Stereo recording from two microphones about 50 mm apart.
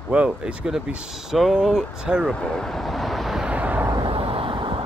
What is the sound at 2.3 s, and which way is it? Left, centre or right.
Vehicle, centre.